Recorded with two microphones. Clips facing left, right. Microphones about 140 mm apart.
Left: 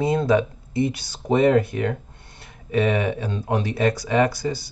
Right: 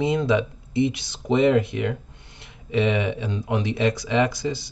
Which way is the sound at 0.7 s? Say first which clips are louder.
Right 1 dB; 20° right (ahead or behind).